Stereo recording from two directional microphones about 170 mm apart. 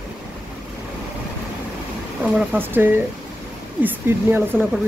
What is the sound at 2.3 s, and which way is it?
Speech, 10° right (ahead or behind).